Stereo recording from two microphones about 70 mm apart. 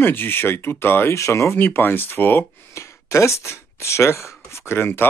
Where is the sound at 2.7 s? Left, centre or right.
Left.